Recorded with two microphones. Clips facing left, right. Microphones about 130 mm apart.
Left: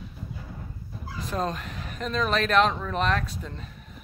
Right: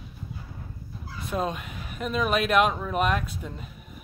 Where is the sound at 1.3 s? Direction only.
5° right (ahead or behind).